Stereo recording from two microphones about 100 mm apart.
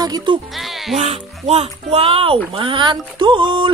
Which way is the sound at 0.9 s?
70° right (ahead or behind).